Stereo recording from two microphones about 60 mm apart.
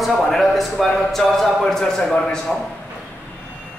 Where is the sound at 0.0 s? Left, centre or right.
Centre.